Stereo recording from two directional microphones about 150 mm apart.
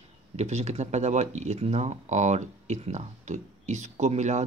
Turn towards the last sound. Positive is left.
turn(degrees=-50)  # may be behind; listen again after turning